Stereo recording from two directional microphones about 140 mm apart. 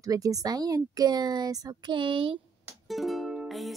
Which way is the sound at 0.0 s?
25° right (ahead or behind).